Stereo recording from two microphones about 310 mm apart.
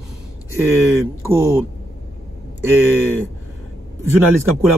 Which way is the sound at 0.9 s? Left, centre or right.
Centre.